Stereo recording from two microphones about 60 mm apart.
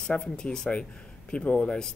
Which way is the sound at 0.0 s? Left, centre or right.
Centre.